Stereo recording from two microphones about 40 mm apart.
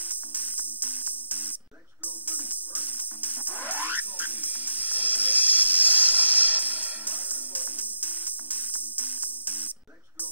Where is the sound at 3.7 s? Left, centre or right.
Right.